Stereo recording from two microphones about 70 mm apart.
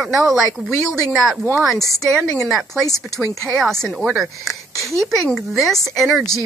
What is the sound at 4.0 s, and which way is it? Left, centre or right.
Speech, centre.